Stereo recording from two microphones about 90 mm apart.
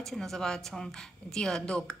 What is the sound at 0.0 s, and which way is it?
A woman's voice, 5° left (ahead or behind).